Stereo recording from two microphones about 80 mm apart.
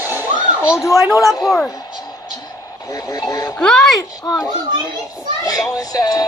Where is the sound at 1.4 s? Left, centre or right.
Centre.